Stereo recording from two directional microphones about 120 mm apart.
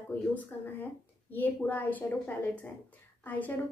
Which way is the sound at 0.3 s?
15° left (ahead or behind).